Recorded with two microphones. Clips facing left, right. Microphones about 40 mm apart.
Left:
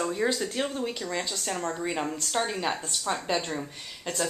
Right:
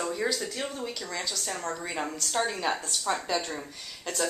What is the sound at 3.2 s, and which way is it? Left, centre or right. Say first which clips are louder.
Speech: left 1 dB; centre.